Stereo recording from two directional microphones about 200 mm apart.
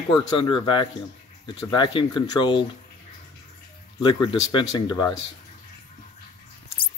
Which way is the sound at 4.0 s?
25° left (ahead or behind).